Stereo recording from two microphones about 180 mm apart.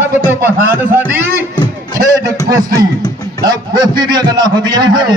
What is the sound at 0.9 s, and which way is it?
A man's voice, 10° right (ahead or behind).